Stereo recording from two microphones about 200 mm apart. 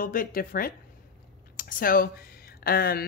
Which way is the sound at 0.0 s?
45° left (ahead or behind).